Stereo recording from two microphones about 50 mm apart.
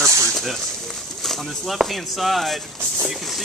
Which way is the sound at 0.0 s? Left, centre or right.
Right.